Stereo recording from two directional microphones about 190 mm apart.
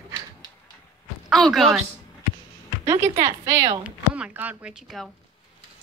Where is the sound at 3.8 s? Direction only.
5° right (ahead or behind).